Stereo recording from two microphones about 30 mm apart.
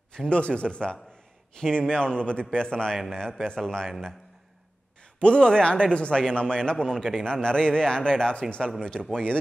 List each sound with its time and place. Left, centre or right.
0.3 s speech: left
3.1 s speech: centre
5.2 s speech: left